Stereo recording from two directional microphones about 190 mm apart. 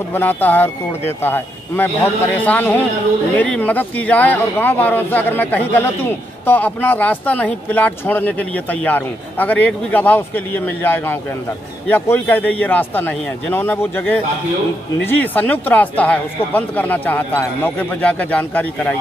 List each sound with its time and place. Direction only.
0.1 s speech: 10° left (ahead or behind)